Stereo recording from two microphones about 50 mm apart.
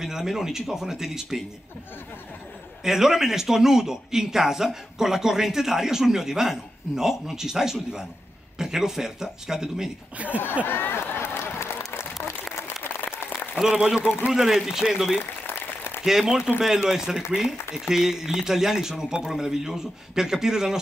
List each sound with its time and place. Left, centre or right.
0.0 s a man's voice: centre
2.8 s a man's voice: centre
10.1 s speech: right
10.7 s a sound: left
11.9 s applause: left
13.6 s a man's voice: centre